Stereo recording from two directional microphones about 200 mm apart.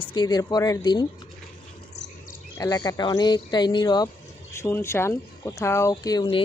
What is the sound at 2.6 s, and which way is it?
Speech, 20° left (ahead or behind).